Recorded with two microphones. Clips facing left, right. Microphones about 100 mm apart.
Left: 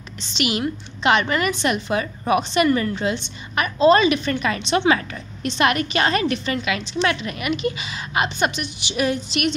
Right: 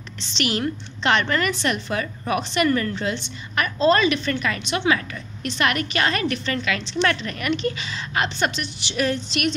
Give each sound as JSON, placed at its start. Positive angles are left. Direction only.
{"t": 0.3, "sound": "a woman's voice", "side_deg": 15}